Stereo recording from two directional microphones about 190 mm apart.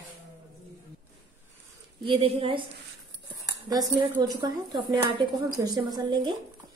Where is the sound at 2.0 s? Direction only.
30° right (ahead or behind).